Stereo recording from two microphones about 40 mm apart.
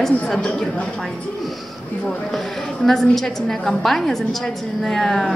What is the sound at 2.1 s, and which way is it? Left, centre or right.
A woman's voice, centre.